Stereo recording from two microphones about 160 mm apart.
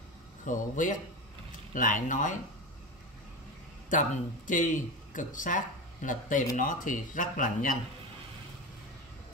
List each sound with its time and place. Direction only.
0.5 s speech: 55° left (ahead or behind)
3.9 s a man's voice: 55° left (ahead or behind)